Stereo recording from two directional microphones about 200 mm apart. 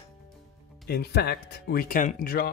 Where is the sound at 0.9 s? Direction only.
55° left (ahead or behind).